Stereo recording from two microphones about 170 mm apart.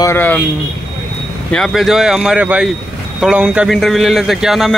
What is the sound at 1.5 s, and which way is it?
Speech, centre (ahead or behind).